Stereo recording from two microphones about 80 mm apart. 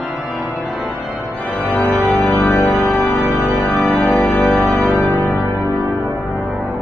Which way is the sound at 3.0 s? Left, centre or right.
Left.